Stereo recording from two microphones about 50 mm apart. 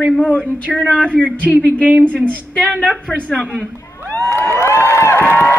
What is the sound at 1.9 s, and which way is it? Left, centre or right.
Speech, right.